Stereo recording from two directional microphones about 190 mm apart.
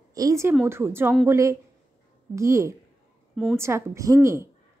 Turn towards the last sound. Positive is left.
turn(degrees=-15)  # may be behind; listen again after turning